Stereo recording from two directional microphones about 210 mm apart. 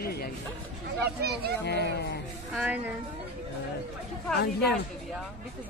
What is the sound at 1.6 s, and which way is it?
Speech, 50° left (ahead or behind).